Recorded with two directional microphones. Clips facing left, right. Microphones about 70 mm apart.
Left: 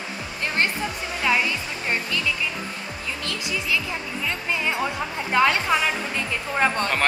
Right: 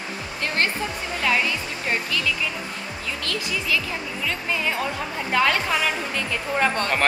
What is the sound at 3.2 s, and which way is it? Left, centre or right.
Speech, centre.